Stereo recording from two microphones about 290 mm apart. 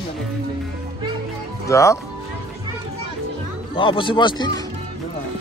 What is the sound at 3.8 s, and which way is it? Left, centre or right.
Speech, centre.